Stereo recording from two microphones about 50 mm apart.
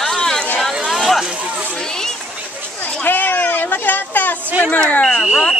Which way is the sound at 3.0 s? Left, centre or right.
Left.